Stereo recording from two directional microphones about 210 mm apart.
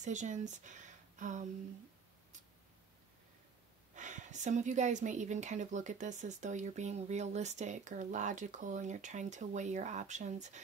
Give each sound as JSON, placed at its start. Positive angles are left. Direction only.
{"t": 0.0, "sound": "speech", "side_deg": -35}
{"t": 3.9, "sound": "a woman's voice", "side_deg": -35}